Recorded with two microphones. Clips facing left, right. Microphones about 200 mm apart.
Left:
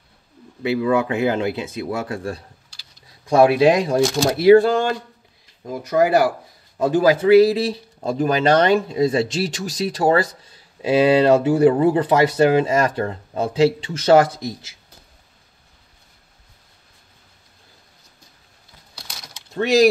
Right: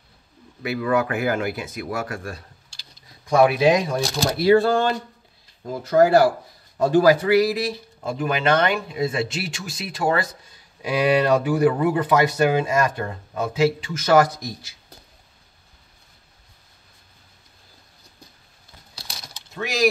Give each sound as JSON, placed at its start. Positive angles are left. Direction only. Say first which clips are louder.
{"t": 0.6, "sound": "speech", "louder": "left 3 dB", "side_deg": 25}
{"t": 4.5, "sound": "speech", "louder": "left 4 dB", "side_deg": 15}